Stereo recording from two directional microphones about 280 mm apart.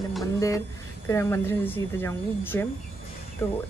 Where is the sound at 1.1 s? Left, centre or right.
Centre.